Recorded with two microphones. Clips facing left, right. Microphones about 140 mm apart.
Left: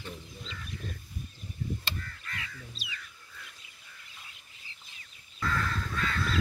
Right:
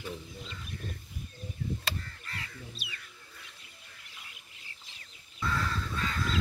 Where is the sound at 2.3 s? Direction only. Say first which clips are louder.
Left 2 dB; 35° right (ahead or behind).